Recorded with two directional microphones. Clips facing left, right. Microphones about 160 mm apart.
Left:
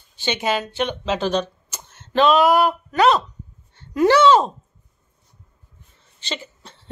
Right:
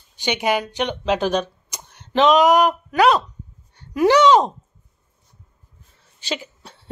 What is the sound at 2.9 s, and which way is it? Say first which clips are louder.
Speech: right 1 dB; 5° right (ahead or behind).